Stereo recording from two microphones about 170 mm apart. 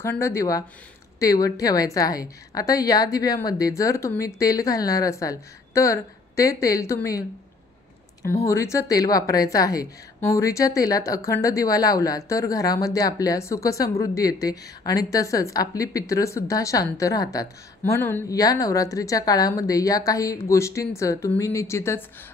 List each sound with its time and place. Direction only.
0.0 s a woman's voice: 15° left (ahead or behind)
8.5 s a woman's voice: 20° left (ahead or behind)